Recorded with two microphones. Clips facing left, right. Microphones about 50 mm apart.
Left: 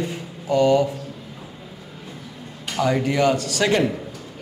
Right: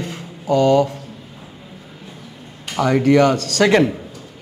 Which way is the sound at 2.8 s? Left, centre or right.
Right.